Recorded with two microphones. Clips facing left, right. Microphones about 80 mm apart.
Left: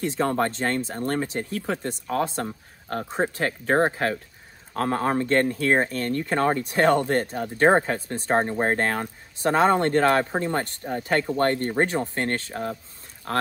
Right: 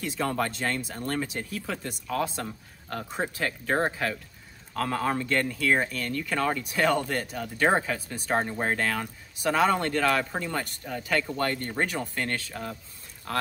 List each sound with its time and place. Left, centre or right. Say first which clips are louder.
0.0 s speech: left 5 dB; left